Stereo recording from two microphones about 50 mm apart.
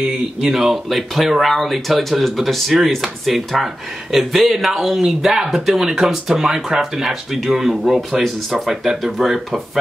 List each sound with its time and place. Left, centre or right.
0.4 s speech: centre